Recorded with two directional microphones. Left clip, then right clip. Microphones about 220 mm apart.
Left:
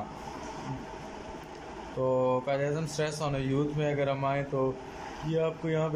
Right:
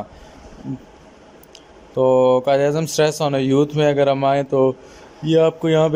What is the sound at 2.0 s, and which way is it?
Speech, 45° right (ahead or behind).